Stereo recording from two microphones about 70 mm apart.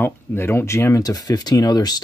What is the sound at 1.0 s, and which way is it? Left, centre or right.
Speech, left.